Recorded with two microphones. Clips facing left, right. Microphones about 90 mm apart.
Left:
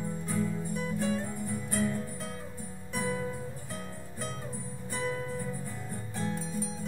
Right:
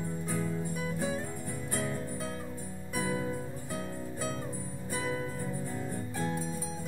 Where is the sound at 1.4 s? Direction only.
40° right (ahead or behind).